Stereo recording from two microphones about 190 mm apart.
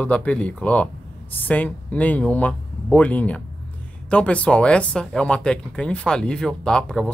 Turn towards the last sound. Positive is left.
turn(degrees=5)  # may be behind; listen again after turning